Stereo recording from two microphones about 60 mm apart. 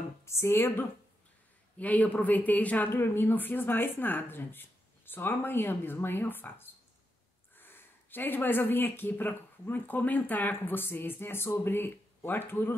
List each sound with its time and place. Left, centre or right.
0.2 s speech: left
1.8 s speech: left
2.9 s speech: left